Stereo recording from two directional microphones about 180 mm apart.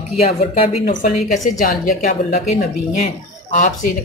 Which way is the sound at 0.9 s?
45° left (ahead or behind).